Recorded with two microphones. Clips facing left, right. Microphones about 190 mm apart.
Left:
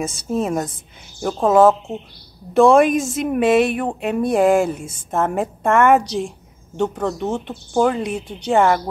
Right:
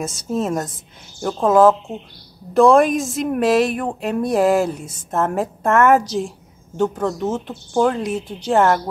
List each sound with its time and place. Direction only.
0.0 s a woman's voice: centre (ahead or behind)